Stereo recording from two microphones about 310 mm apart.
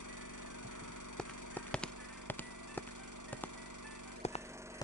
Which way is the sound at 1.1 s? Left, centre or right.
Centre.